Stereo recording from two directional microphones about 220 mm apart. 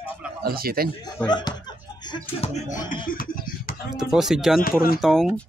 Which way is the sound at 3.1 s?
40° left (ahead or behind).